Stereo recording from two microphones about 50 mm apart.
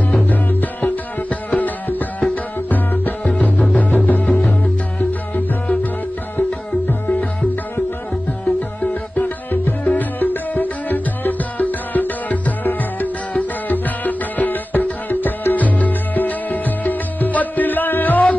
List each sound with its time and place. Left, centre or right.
0.3 s music: left
6.9 s music: left
9.1 s music: left